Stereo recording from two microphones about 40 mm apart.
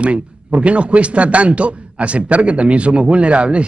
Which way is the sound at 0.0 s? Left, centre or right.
Right.